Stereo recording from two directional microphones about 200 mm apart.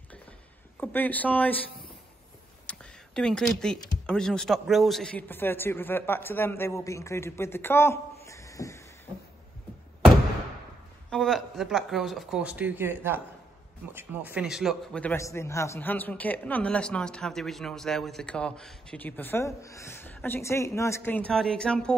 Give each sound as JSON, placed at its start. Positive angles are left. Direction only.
{"t": 0.7, "sound": "a man's voice", "side_deg": 10}
{"t": 2.6, "sound": "speech", "side_deg": 5}
{"t": 11.1, "sound": "a man's voice", "side_deg": 0}